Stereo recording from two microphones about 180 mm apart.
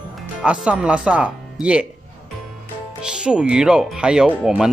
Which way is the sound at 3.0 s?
5° right (ahead or behind).